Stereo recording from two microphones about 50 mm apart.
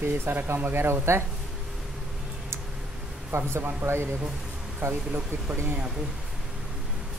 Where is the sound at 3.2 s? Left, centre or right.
Right.